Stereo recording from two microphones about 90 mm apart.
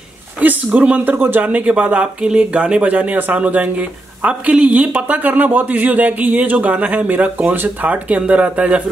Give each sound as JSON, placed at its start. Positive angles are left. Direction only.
{"t": 0.4, "sound": "a man's voice", "side_deg": -20}